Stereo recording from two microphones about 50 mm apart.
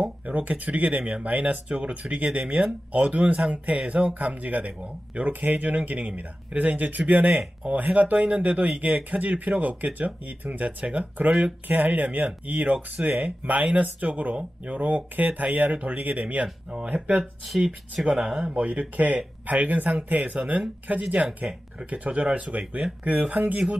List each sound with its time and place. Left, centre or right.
0.0 s speech: right
11.6 s speech: right
17.1 s speech: centre
18.6 s speech: right